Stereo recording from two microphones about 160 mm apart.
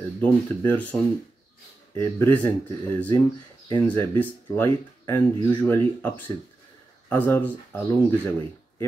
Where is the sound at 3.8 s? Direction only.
15° left (ahead or behind).